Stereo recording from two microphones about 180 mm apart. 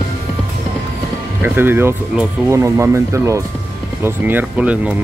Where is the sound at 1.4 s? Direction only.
10° right (ahead or behind).